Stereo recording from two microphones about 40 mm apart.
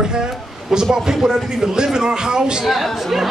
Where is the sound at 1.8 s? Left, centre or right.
Centre.